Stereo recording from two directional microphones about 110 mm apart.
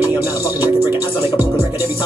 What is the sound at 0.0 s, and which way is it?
Music, 20° right (ahead or behind).